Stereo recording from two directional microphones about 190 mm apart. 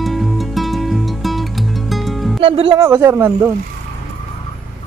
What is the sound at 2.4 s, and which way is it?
Speech, 30° right (ahead or behind).